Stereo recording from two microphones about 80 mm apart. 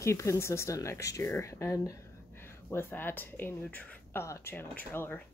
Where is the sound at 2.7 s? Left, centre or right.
Left.